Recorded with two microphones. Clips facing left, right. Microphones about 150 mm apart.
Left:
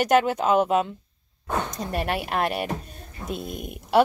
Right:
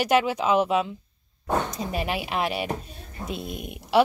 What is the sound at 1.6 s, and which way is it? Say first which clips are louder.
Speech: left 1 dB; centre (ahead or behind).